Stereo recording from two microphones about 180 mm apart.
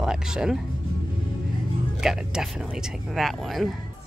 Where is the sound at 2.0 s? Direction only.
5° right (ahead or behind).